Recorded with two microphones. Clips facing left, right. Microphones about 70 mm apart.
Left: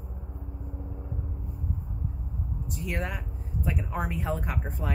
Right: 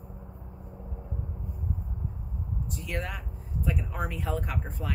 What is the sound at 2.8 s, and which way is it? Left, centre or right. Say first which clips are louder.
Speech: left 3 dB; centre.